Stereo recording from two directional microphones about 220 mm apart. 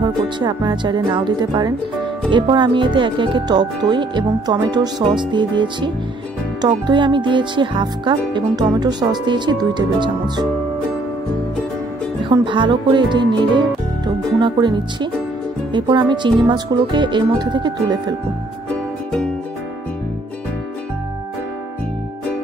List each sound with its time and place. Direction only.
0.0 s speech: 20° right (ahead or behind)
12.2 s speech: 20° right (ahead or behind)